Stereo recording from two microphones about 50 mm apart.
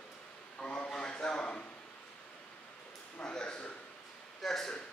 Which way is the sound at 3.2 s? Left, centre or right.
Centre.